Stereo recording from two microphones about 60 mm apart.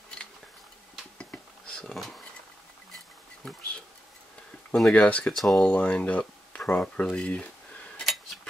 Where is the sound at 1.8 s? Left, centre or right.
Centre.